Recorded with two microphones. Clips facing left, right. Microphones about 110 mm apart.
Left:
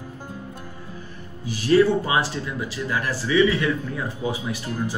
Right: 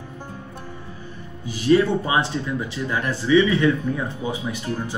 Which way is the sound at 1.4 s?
20° right (ahead or behind).